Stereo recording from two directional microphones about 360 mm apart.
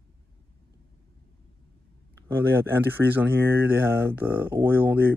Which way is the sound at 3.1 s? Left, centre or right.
Centre.